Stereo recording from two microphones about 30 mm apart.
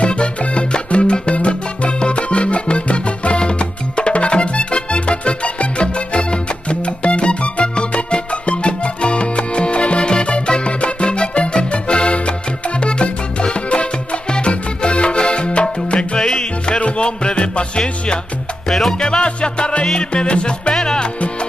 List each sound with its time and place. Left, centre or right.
0.0 s music: left
3.3 s music: left
16.2 s music: left
18.7 s music: centre
18.9 s music: left
20.7 s music: left